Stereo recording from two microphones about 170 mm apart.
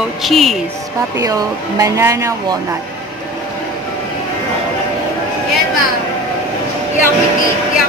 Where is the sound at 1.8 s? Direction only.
20° right (ahead or behind).